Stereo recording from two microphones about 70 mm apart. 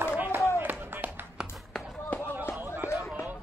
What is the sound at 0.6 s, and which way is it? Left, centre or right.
Music, right.